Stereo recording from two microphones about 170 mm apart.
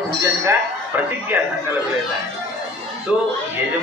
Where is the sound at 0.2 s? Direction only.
15° right (ahead or behind).